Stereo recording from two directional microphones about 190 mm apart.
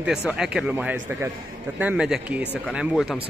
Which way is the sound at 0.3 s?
5° right (ahead or behind).